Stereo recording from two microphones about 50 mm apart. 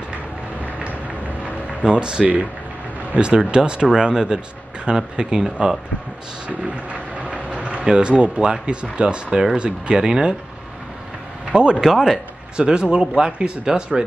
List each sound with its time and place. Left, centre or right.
1.4 s a sound: centre
3.2 s speech: centre
6.7 s a sound: right
7.8 s speech: centre
11.5 s speech: centre
12.5 s speech: centre